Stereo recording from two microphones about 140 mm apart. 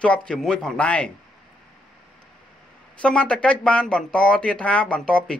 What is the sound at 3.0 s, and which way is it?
Speech, 10° left (ahead or behind).